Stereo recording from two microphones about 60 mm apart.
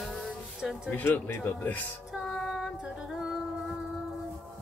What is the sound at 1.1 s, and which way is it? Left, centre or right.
Speech, left.